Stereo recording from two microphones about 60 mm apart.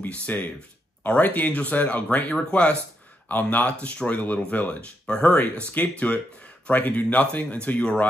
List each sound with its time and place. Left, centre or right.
0.0 s speech: left
3.3 s speech: left